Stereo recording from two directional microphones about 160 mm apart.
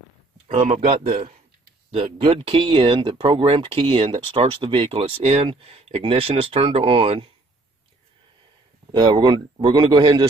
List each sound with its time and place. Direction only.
0.5 s speech: 50° right (ahead or behind)
1.9 s speech: 40° right (ahead or behind)
8.9 s speech: 25° right (ahead or behind)